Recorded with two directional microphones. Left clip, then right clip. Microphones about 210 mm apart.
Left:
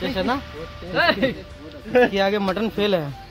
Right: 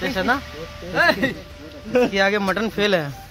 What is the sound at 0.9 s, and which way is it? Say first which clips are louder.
Speech: right 1 dB; 40° left (ahead or behind).